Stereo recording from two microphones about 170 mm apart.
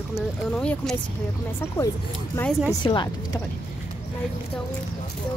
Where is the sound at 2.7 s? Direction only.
25° left (ahead or behind).